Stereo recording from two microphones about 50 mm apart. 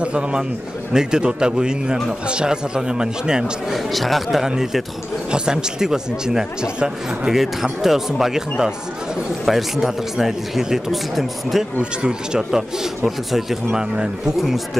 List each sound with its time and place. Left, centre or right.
0.0 s a man's voice: centre
3.7 s speech: centre
5.3 s speech: centre
11.8 s speech: centre